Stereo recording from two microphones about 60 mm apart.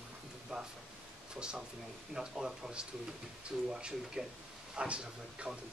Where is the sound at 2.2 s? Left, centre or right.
Centre.